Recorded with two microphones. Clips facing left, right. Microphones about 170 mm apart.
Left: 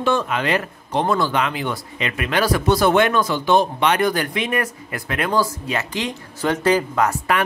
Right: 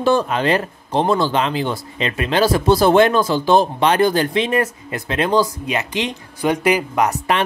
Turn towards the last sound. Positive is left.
turn(degrees=-20)  # may be behind; listen again after turning